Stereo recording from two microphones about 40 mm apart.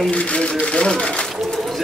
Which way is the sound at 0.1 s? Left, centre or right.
Left.